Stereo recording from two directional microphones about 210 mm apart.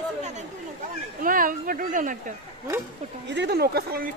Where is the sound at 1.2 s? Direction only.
40° right (ahead or behind).